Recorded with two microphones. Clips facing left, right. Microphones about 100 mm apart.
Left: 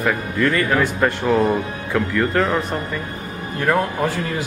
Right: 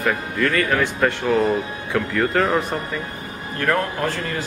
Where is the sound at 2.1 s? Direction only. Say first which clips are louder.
Right 1 dB; 5° right (ahead or behind).